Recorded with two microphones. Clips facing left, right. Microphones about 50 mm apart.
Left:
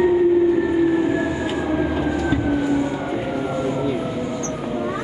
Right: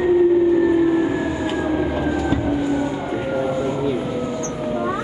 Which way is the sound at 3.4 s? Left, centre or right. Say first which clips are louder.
Right 1 dB; centre.